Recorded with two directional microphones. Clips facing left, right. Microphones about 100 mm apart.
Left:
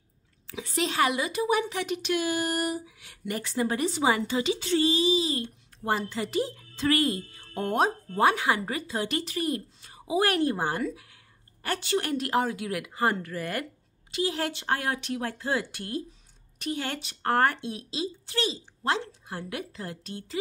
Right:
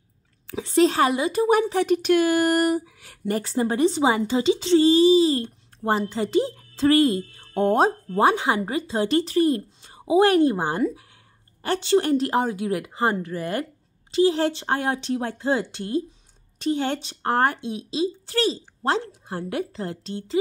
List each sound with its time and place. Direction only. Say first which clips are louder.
0.6 s speech: right 8 dB; 35° right (ahead or behind)
1.4 s speech: right 8 dB; 45° right (ahead or behind); by 18.1 s 20° right (ahead or behind)
18.2 s speech: right 7 dB; 40° right (ahead or behind)